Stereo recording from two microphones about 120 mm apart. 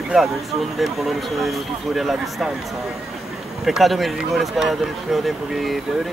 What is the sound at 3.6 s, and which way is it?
Speech, centre (ahead or behind).